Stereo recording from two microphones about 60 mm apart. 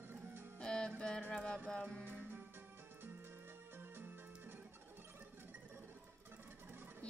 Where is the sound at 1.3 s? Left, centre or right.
Centre.